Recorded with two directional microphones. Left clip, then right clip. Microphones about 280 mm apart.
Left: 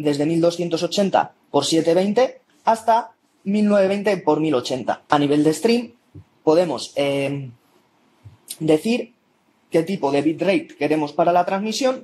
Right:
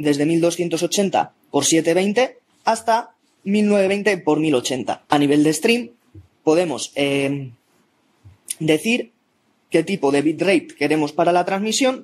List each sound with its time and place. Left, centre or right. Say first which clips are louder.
0.0 s speech: right 1 dB; right
8.5 s speech: even; right